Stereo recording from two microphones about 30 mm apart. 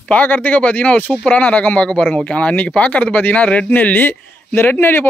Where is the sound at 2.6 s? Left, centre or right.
Left.